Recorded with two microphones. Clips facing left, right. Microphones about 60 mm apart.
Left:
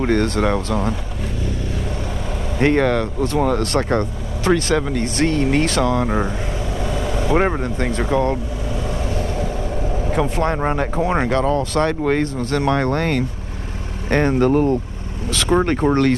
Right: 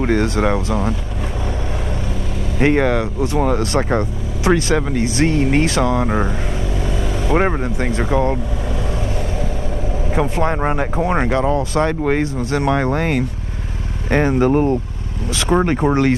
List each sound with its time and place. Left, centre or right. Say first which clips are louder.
0.0 s speech: right 1 dB; centre
2.6 s speech: right 1 dB; centre
10.1 s speech: right 1 dB; right
10.4 s speech: right 1 dB; centre
14.5 s speech: right 1 dB; centre